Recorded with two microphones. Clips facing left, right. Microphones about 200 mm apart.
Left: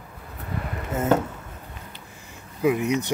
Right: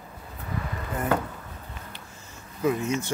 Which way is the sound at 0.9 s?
20° left (ahead or behind).